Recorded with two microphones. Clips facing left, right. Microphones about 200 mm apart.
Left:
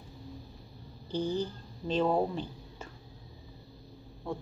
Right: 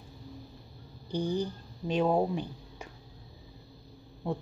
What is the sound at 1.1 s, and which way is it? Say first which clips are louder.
Speech: right 1 dB; 15° right (ahead or behind).